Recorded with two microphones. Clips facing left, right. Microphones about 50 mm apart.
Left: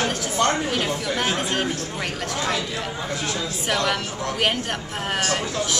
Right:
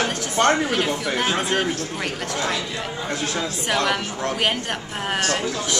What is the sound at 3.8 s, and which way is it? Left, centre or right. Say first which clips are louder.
Speech: right 1 dB; centre.